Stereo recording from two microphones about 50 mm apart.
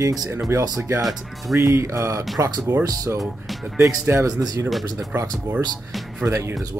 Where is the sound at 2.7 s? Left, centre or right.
Right.